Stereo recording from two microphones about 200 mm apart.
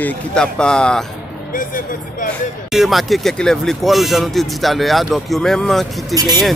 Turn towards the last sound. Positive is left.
turn(degrees=-20)  # may be behind; listen again after turning